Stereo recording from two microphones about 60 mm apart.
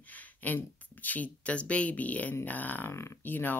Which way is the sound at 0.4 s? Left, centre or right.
Left.